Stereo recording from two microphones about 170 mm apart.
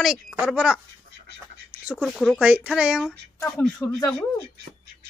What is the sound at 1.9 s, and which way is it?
A woman's voice, 5° right (ahead or behind).